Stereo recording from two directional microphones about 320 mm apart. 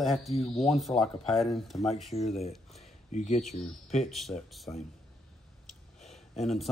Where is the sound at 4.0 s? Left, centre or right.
Centre.